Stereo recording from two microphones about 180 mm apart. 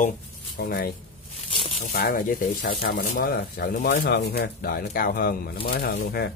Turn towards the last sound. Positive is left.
turn(degrees=60)  # may be behind; listen again after turning